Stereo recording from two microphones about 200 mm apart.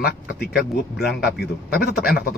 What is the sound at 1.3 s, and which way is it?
Speech, 50° left (ahead or behind).